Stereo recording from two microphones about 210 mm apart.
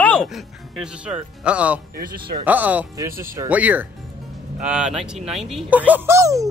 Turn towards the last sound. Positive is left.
turn(degrees=-15)  # may be behind; listen again after turning